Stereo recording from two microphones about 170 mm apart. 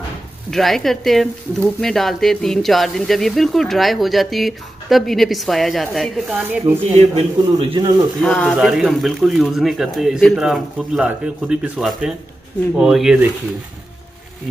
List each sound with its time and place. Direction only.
0.5 s speech: centre (ahead or behind)
6.9 s a man's voice: 40° right (ahead or behind)
8.2 s speech: 5° left (ahead or behind)